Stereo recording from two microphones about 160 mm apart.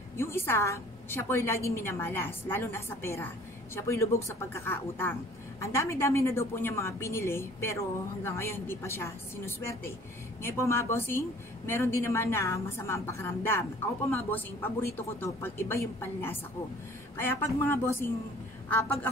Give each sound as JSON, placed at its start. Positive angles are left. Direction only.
{"t": 0.2, "sound": "a woman's voice", "side_deg": 15}